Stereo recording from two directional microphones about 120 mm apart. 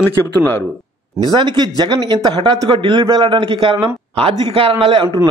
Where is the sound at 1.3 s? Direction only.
40° right (ahead or behind).